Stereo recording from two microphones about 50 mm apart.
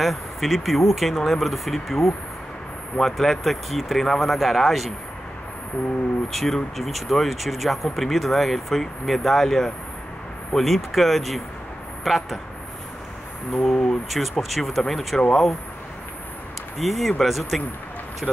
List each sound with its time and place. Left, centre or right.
0.0 s speech: centre
6.3 s speech: centre
13.5 s speech: centre
16.7 s speech: centre